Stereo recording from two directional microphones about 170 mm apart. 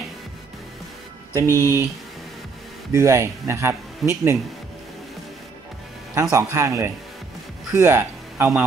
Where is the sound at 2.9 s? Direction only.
15° right (ahead or behind).